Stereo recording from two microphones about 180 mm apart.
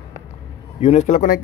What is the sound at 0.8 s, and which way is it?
Speech, 35° left (ahead or behind).